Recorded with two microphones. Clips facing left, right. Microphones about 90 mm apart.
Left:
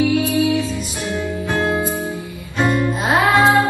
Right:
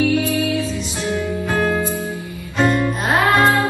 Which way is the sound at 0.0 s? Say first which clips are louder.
Left 1 dB; 15° left (ahead or behind).